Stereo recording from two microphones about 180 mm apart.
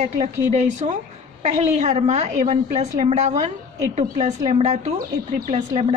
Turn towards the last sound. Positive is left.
turn(degrees=-35)  # may be behind; listen again after turning